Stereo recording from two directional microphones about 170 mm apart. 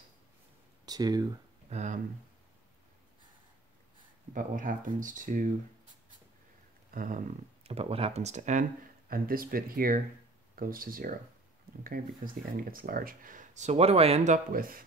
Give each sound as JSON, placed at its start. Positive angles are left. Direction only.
{"t": 0.8, "sound": "speech", "side_deg": -20}
{"t": 1.7, "sound": "speech", "side_deg": -40}
{"t": 4.3, "sound": "speech", "side_deg": -50}
{"t": 6.9, "sound": "speech", "side_deg": -55}
{"t": 9.1, "sound": "speech", "side_deg": -60}